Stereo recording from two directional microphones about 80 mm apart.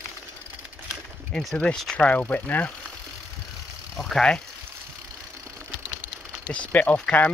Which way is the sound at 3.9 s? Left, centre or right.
Centre.